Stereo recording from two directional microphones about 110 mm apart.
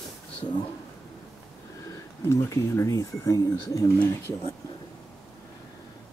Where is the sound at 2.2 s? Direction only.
30° left (ahead or behind).